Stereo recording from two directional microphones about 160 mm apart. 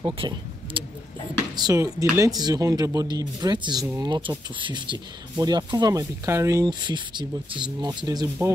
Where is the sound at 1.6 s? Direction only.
20° right (ahead or behind).